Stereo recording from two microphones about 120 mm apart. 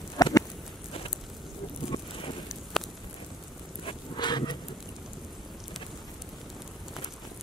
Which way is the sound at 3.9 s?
40° left (ahead or behind).